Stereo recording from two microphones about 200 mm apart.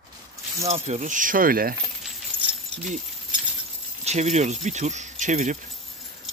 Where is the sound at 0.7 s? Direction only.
35° right (ahead or behind).